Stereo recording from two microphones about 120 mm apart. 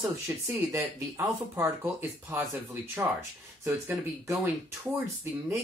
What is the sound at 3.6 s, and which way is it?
Speech, 20° right (ahead or behind).